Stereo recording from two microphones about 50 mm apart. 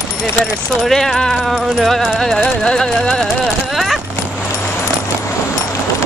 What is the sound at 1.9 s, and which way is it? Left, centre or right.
Music, centre.